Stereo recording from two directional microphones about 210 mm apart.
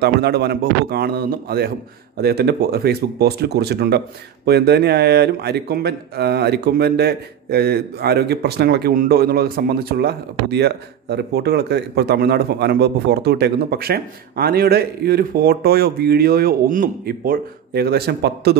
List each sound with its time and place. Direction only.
0.0 s speech: 50° right (ahead or behind)